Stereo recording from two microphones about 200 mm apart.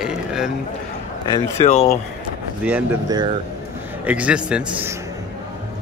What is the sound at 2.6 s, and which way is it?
Speech, 10° right (ahead or behind).